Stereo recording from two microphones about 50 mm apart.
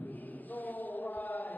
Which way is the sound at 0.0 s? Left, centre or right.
Left.